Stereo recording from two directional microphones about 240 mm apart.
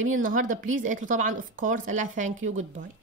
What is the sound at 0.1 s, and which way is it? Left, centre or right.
Speech, right.